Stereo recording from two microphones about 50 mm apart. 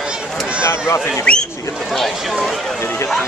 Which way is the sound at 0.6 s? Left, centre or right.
Left.